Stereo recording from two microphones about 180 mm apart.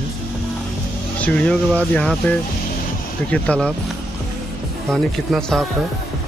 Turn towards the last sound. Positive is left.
turn(degrees=0)  # may be behind; listen again after turning